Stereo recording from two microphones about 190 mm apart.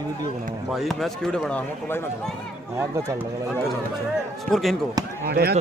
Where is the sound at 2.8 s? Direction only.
15° right (ahead or behind).